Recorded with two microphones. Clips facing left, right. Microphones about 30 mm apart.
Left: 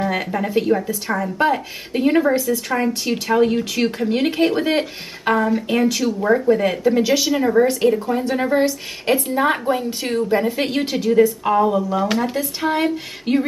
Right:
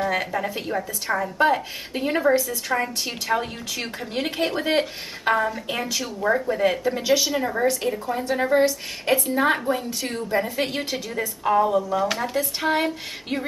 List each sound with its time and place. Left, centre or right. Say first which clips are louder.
0.0 s speech: left 3 dB; centre
6.7 s female singing: left 5 dB; centre
7.2 s speech: left 6 dB; centre
12.6 s female singing: left 5 dB; centre